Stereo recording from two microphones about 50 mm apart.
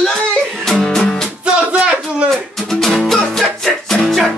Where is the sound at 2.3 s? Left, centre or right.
Centre.